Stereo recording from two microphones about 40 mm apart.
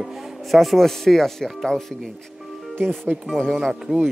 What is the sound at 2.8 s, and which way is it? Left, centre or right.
Speech, right.